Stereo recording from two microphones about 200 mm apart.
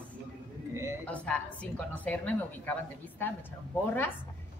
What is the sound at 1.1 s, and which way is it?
A woman's voice, 5° left (ahead or behind).